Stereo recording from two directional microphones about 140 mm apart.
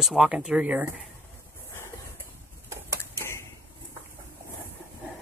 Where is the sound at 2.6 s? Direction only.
20° right (ahead or behind).